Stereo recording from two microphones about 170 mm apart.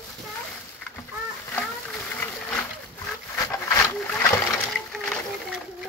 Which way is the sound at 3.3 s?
15° left (ahead or behind).